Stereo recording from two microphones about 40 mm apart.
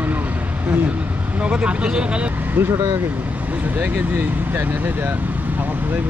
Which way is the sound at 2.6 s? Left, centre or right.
Right.